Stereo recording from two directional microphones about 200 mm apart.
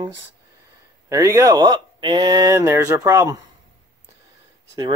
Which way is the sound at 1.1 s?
15° right (ahead or behind).